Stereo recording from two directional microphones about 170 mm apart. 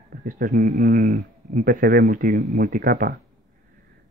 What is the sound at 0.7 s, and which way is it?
Speech, 45° right (ahead or behind).